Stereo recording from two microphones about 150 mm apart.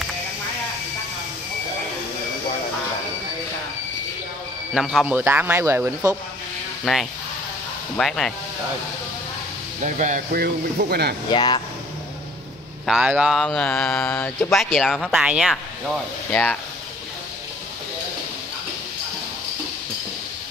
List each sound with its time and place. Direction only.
4.7 s speech: 5° right (ahead or behind)
6.8 s speech: centre (ahead or behind)
9.8 s speech: 55° right (ahead or behind)
10.4 s speech: 90° right
11.2 s speech: 30° left (ahead or behind)
12.8 s speech: 5° right (ahead or behind)